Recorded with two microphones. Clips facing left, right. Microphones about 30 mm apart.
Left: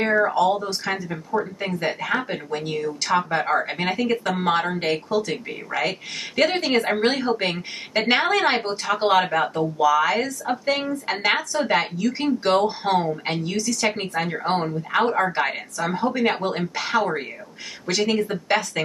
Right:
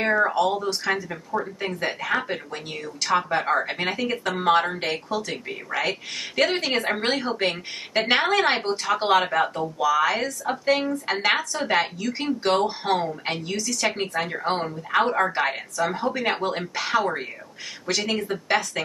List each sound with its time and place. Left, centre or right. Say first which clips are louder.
0.0 s speech: left 2 dB; centre